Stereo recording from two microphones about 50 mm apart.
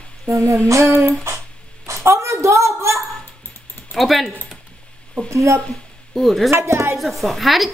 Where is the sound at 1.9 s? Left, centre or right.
Right.